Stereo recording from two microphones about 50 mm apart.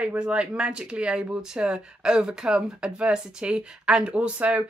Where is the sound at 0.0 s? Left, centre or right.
Right.